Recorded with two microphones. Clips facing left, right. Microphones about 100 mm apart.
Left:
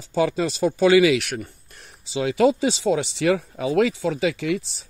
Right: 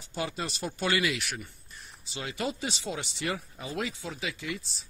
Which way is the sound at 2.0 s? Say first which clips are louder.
Left 15 dB; 90° left.